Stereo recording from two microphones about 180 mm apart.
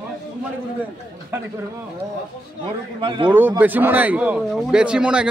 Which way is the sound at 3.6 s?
10° right (ahead or behind).